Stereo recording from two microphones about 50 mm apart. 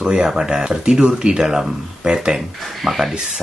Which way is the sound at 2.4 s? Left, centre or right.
Centre.